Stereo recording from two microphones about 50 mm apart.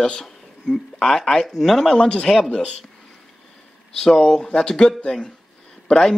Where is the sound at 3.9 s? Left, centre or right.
Centre.